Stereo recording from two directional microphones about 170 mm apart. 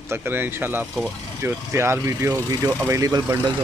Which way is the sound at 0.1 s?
15° right (ahead or behind).